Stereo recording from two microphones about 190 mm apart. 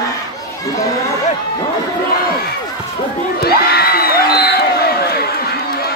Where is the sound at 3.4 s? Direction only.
55° left (ahead or behind).